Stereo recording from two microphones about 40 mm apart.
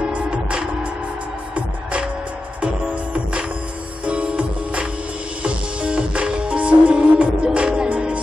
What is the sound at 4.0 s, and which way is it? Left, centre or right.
Music, right.